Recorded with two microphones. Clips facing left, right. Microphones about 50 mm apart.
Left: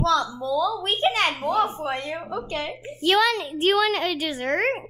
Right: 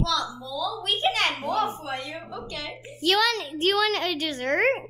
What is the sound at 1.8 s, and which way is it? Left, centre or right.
Speech, left.